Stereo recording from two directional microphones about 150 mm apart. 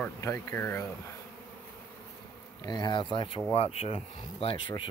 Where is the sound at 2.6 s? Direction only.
25° left (ahead or behind).